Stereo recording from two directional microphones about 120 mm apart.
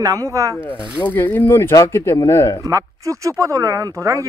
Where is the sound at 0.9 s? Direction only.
15° left (ahead or behind).